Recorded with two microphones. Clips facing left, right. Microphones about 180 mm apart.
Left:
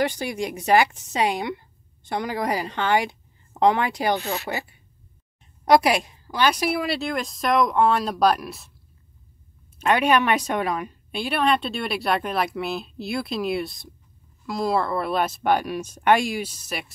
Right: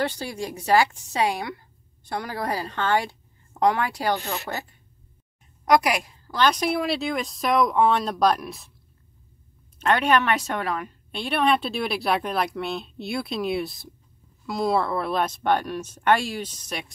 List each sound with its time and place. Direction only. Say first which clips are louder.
0.0 s a woman's voice: left 3 dB; 15° left (ahead or behind)
5.7 s speech: left 3 dB; 25° left (ahead or behind)
6.2 s a woman's voice: right 1 dB; 10° left (ahead or behind)
9.8 s a woman's voice: left 1 dB; 10° left (ahead or behind)